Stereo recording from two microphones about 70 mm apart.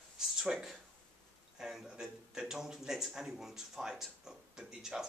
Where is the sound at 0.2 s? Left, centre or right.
Centre.